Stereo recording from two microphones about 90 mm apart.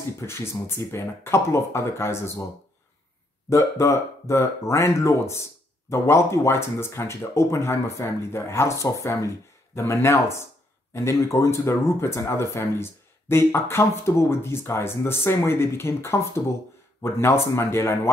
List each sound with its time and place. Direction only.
0.2 s speech: 30° left (ahead or behind)
3.4 s speech: 30° left (ahead or behind)